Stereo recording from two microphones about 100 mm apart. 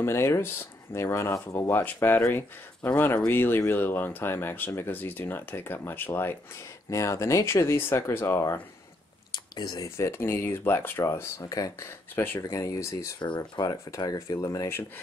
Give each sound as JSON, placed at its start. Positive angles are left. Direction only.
{"t": 0.0, "sound": "speech", "side_deg": 25}
{"t": 6.9, "sound": "speech", "side_deg": 30}
{"t": 9.3, "sound": "a sound", "side_deg": 45}
{"t": 9.8, "sound": "speech", "side_deg": 25}